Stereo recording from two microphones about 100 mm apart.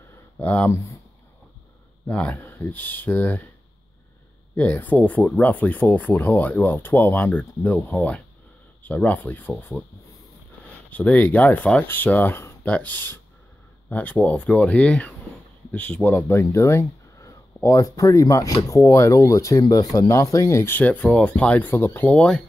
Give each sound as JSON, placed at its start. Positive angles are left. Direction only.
{"t": 0.4, "sound": "speech", "side_deg": 15}
{"t": 2.0, "sound": "speech", "side_deg": 15}
{"t": 4.6, "sound": "speech", "side_deg": 15}
{"t": 10.9, "sound": "speech", "side_deg": 15}